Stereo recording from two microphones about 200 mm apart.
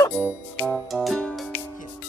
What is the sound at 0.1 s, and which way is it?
Music, 10° right (ahead or behind).